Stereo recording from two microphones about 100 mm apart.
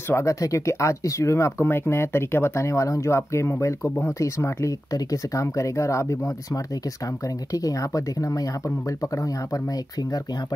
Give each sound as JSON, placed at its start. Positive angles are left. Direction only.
{"t": 0.1, "sound": "speech", "side_deg": 30}